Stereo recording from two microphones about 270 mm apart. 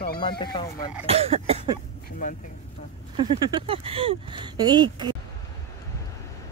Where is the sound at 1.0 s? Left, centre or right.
Right.